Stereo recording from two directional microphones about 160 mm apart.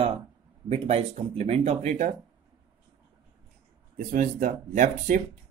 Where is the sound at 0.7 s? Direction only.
40° right (ahead or behind).